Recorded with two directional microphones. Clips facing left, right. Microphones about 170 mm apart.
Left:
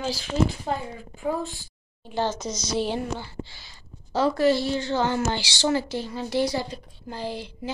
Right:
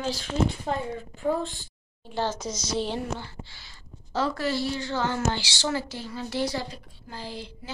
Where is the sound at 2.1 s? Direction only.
5° right (ahead or behind).